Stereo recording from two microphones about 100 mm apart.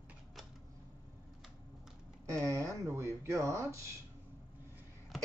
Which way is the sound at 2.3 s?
30° right (ahead or behind).